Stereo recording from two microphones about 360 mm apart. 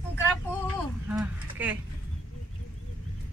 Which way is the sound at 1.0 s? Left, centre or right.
Centre.